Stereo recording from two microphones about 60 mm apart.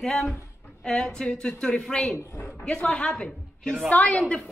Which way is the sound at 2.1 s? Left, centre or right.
Left.